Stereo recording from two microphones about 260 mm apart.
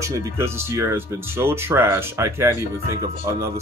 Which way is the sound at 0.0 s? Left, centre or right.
Centre.